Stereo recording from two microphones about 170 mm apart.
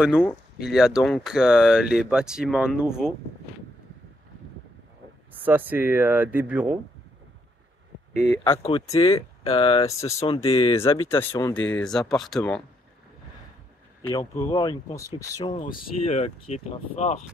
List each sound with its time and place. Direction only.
0.7 s speech: 5° right (ahead or behind)
5.4 s speech: 10° right (ahead or behind)
8.1 s speech: 75° left (ahead or behind)
8.9 s speech: 35° left (ahead or behind)
9.8 s speech: 15° left (ahead or behind)
10.1 s speech: 35° left (ahead or behind)
11.1 s speech: 15° left (ahead or behind)
11.7 s speech: 5° left (ahead or behind)
14.1 s speech: 25° left (ahead or behind)
15.6 s speech: 55° left (ahead or behind)
16.1 s speech: 40° left (ahead or behind)